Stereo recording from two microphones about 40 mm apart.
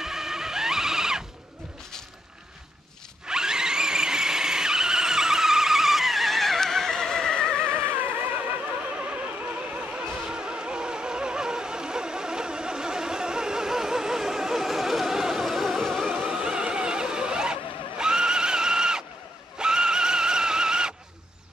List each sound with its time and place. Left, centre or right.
0.0 s vehicle: centre
3.3 s vehicle: centre
7.6 s vehicle: right
10.2 s music: right; by 16.1 s centre
16.3 s a sound: centre